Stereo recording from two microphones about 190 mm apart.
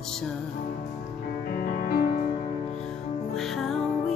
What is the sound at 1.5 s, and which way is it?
Music, 50° left (ahead or behind).